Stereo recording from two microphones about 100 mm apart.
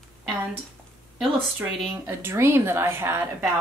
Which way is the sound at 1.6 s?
20° right (ahead or behind).